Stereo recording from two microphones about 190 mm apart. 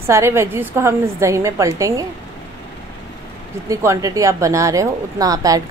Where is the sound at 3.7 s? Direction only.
15° right (ahead or behind).